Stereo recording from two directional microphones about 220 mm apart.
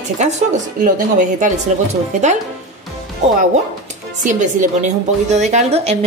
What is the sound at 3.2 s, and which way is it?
A woman's voice, 30° right (ahead or behind).